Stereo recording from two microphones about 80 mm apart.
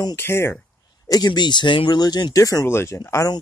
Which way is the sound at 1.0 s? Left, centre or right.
Left.